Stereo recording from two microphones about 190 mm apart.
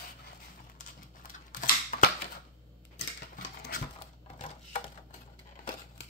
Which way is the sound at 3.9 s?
45° left (ahead or behind).